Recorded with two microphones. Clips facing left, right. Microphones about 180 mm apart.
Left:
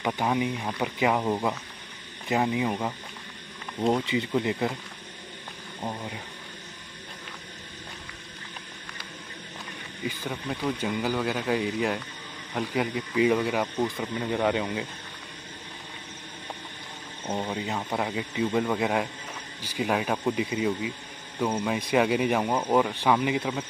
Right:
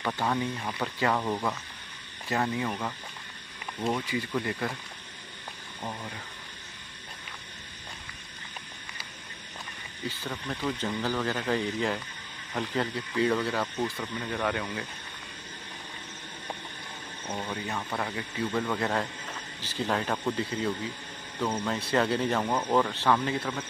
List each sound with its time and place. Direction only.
0.0 s speech: 15° left (ahead or behind)
3.8 s speech: 25° left (ahead or behind)
5.8 s speech: 20° left (ahead or behind)
10.0 s speech: 10° left (ahead or behind)
17.3 s speech: 25° left (ahead or behind)